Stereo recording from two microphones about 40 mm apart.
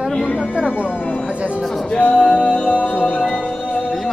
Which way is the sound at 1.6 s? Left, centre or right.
Centre.